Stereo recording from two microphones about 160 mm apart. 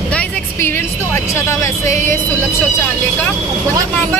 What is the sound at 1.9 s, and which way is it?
Speech, 50° right (ahead or behind).